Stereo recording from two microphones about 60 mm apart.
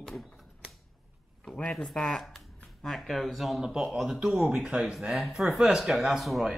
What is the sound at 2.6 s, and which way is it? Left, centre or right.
Speech, centre.